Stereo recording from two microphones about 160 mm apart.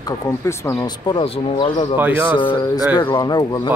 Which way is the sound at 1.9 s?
10° right (ahead or behind).